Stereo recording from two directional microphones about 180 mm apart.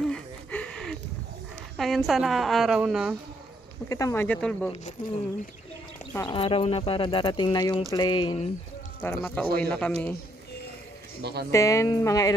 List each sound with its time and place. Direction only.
0.0 s gasp: 5° left (ahead or behind)
1.8 s a woman's voice: centre (ahead or behind)
3.9 s speech: 15° left (ahead or behind)
6.1 s speech: 25° left (ahead or behind)
9.0 s a woman's voice: 5° left (ahead or behind)
11.5 s speech: 15° left (ahead or behind)